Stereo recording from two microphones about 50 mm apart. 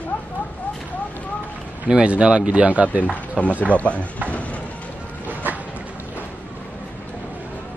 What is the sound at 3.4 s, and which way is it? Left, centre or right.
Speech, centre.